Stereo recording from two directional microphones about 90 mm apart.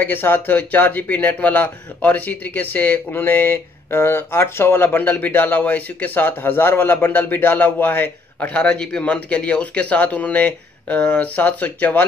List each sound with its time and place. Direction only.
0.0 s a man's voice: 20° left (ahead or behind)